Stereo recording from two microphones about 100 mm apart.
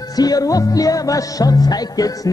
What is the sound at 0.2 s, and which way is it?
Music, 40° left (ahead or behind).